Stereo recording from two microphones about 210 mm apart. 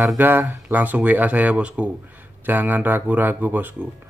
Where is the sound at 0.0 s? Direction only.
10° right (ahead or behind).